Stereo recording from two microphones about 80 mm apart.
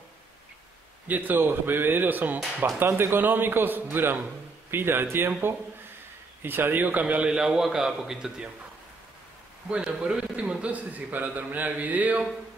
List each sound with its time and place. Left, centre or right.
1.0 s speech: right
6.4 s a man's voice: right; by 8.5 s centre
9.7 s a man's voice: centre